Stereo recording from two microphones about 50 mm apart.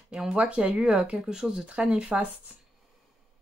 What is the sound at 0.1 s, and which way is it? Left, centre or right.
Speech, centre.